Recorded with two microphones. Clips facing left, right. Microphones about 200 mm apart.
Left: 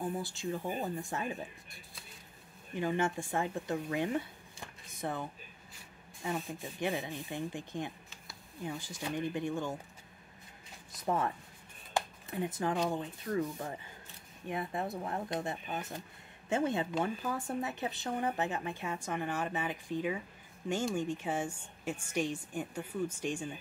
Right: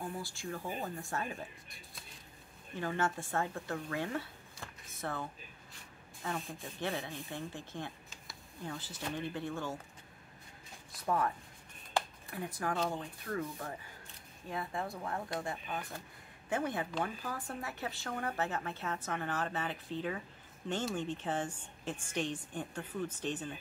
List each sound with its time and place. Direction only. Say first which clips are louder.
0.0 s speech: left 5 dB; 20° left (ahead or behind)
2.7 s speech: left 3 dB; 15° left (ahead or behind)
11.1 s speech: left 1 dB; 25° left (ahead or behind)